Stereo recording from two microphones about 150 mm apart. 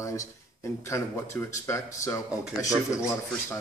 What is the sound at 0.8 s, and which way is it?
Speech, 20° left (ahead or behind).